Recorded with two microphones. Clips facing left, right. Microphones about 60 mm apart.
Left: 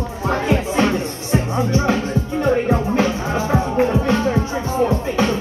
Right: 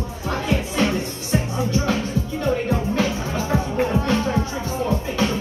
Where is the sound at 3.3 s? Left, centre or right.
Left.